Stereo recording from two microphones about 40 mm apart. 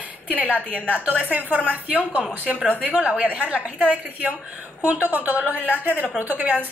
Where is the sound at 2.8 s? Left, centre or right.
Right.